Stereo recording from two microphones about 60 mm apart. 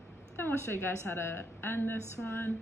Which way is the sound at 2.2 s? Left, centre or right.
Centre.